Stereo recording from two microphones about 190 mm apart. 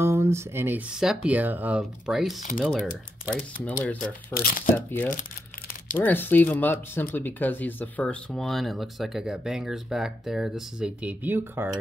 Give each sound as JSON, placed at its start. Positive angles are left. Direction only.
{"t": 0.0, "sound": "speech", "side_deg": -15}
{"t": 4.3, "sound": "speech", "side_deg": 50}
{"t": 4.7, "sound": "speech", "side_deg": 10}